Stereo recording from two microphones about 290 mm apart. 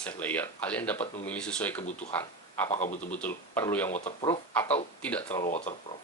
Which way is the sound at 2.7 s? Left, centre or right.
Left.